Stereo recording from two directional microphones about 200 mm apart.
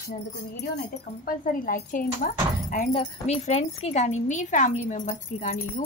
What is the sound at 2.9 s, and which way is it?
Speech, 30° left (ahead or behind).